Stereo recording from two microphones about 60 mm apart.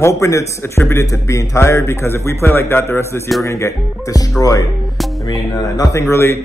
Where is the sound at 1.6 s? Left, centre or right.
Left.